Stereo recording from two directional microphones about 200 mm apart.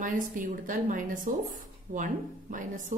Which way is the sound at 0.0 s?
40° right (ahead or behind).